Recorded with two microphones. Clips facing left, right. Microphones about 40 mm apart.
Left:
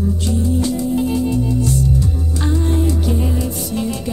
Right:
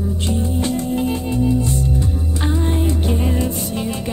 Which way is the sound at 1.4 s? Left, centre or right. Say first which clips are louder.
Even; right.